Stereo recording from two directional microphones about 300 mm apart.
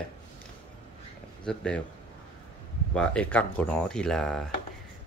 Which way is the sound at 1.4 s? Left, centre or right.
Centre.